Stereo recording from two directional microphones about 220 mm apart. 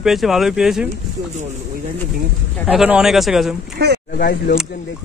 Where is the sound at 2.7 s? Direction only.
5° right (ahead or behind).